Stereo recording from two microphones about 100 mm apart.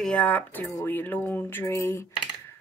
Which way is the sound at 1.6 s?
25° left (ahead or behind).